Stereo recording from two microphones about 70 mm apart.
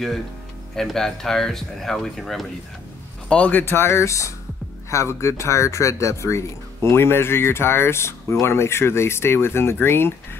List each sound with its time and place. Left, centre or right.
0.7 s speech: centre
3.3 s speech: left